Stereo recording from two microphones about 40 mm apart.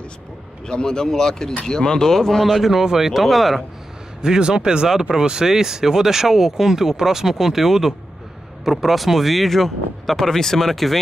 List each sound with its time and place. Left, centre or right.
0.7 s speech: centre
2.4 s speech: centre
4.2 s a man's voice: centre